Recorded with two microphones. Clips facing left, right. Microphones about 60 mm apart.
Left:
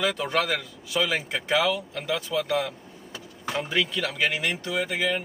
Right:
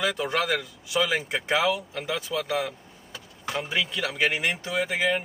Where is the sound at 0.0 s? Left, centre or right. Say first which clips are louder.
Left 1 dB; centre.